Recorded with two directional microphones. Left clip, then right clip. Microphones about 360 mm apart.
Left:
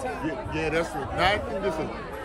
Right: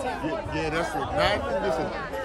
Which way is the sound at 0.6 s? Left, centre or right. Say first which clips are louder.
Left 1 dB; centre.